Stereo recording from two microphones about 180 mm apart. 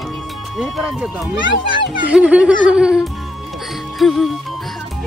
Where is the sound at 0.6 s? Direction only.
Centre (ahead or behind).